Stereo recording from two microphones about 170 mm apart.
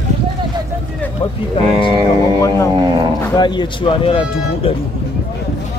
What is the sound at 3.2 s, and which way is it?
Speech, 25° left (ahead or behind).